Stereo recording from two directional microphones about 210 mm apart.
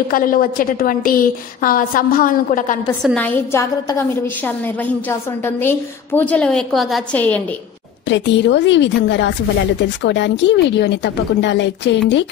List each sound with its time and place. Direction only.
0.1 s a woman's voice: 45° left (ahead or behind)
3.0 s a woman's voice: 5° left (ahead or behind)
8.1 s a woman's voice: 55° left (ahead or behind)